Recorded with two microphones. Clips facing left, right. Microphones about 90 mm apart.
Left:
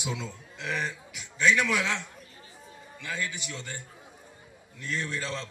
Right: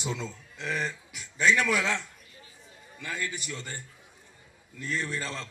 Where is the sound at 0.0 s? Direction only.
15° left (ahead or behind).